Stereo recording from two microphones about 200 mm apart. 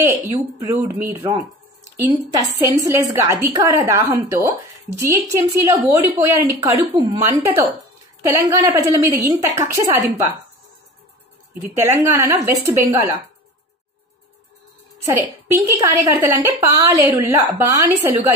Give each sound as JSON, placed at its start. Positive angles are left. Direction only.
{"t": 0.0, "sound": "a woman's voice", "side_deg": -15}
{"t": 11.6, "sound": "a woman's voice", "side_deg": -15}
{"t": 16.1, "sound": "a woman's voice", "side_deg": -15}